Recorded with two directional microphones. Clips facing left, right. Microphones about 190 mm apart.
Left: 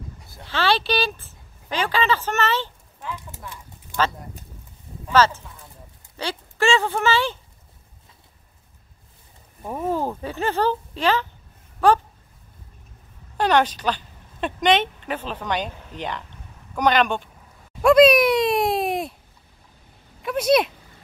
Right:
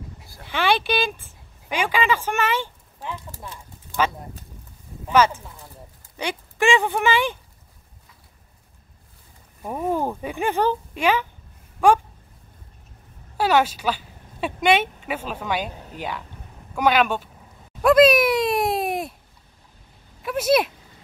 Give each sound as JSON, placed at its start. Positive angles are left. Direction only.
{"t": 0.5, "sound": "speech", "side_deg": -15}
{"t": 3.1, "sound": "clip-clop", "side_deg": -15}
{"t": 5.1, "sound": "speech", "side_deg": -15}
{"t": 9.6, "sound": "speech", "side_deg": 0}
{"t": 9.8, "sound": "speech", "side_deg": -15}
{"t": 13.4, "sound": "speech", "side_deg": -5}
{"t": 20.2, "sound": "speech", "side_deg": -5}